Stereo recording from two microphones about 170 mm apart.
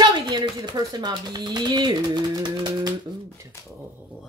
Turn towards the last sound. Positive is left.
turn(degrees=15)  # may be behind; listen again after turning